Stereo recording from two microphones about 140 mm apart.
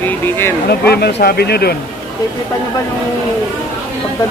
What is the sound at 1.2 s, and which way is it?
Speech, 90° left.